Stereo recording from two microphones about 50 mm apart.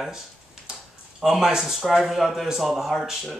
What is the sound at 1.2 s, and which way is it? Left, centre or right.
Speech, centre.